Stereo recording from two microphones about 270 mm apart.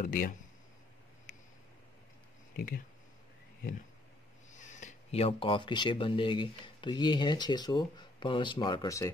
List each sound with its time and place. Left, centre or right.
0.0 s speech: left
2.5 s speech: left
4.5 s speech: left